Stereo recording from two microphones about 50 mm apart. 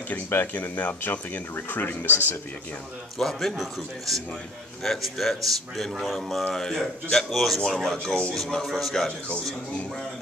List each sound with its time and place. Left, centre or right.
0.3 s speech: left
3.2 s speech: centre